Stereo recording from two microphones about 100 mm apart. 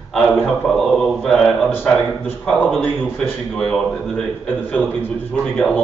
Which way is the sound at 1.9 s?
10° left (ahead or behind).